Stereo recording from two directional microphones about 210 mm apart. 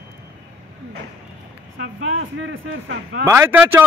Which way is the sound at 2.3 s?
60° right (ahead or behind).